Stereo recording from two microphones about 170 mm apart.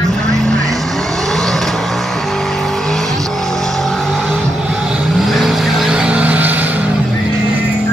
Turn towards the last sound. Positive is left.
turn(degrees=-10)  # may be behind; listen again after turning